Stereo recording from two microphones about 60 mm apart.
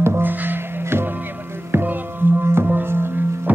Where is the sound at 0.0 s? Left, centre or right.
Right.